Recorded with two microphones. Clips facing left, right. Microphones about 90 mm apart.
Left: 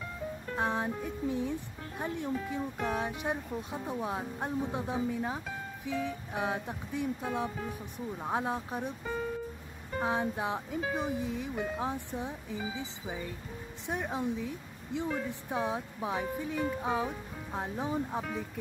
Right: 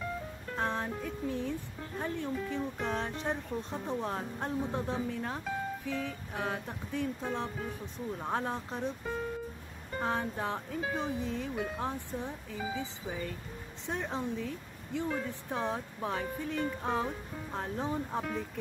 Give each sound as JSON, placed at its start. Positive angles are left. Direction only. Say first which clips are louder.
{"t": 0.6, "sound": "speech", "louder": "left 2 dB", "side_deg": 15}
{"t": 9.9, "sound": "speech", "louder": "left 2 dB", "side_deg": 10}
{"t": 11.5, "sound": "speech", "louder": "left 1 dB", "side_deg": 0}
{"t": 11.8, "sound": "speech", "louder": "left 1 dB", "side_deg": 15}